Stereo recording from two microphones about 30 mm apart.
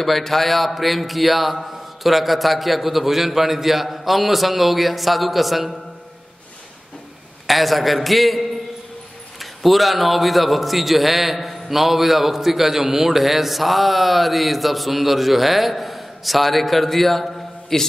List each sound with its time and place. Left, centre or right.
0.0 s a man's voice: centre
7.4 s a man's voice: centre
9.4 s a man's voice: centre